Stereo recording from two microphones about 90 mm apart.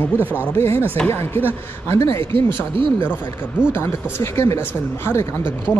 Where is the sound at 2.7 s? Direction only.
70° right (ahead or behind).